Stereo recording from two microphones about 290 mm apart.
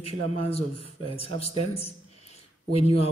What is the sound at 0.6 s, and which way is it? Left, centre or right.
A man's voice, centre.